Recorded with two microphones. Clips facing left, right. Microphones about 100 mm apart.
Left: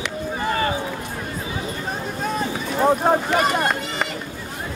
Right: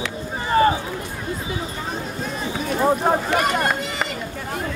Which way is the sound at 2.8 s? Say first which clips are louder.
Left 2 dB; 5° left (ahead or behind).